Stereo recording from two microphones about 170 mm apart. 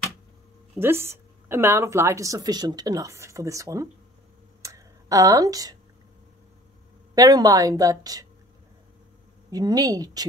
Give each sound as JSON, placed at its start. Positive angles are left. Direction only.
{"t": 0.7, "sound": "a woman's voice", "side_deg": -15}
{"t": 4.6, "sound": "a sound", "side_deg": -20}
{"t": 7.2, "sound": "a woman's voice", "side_deg": -20}
{"t": 9.5, "sound": "a woman's voice", "side_deg": -20}